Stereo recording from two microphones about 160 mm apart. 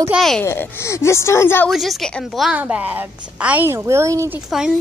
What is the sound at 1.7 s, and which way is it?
A woman's voice, centre (ahead or behind).